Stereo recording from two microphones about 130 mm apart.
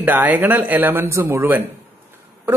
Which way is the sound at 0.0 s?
15° right (ahead or behind).